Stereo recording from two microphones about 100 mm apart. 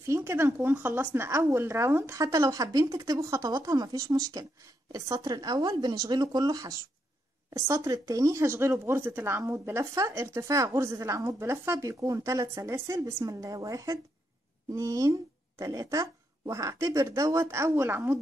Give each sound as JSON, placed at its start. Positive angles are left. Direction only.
{"t": 0.1, "sound": "speech", "side_deg": -25}